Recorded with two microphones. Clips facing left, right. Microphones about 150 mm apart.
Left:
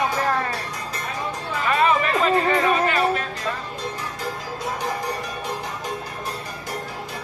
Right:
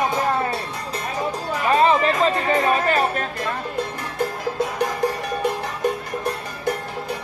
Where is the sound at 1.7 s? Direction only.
30° right (ahead or behind).